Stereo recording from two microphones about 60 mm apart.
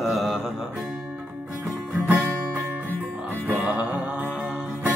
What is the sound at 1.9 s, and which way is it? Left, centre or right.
Guitar, centre.